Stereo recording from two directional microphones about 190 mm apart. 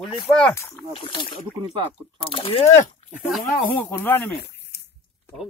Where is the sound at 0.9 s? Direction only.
25° left (ahead or behind).